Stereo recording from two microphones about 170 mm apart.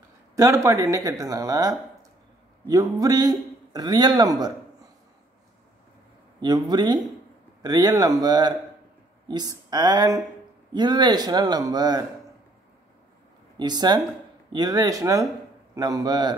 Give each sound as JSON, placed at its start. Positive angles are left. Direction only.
{"t": 0.4, "sound": "a man's voice", "side_deg": -20}
{"t": 6.4, "sound": "a man's voice", "side_deg": -25}
{"t": 13.6, "sound": "a man's voice", "side_deg": -25}